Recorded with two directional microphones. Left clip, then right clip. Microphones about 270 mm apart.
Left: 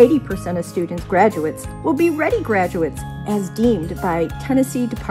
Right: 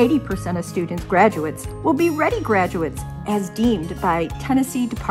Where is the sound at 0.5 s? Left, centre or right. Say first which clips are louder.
Left 5 dB; right.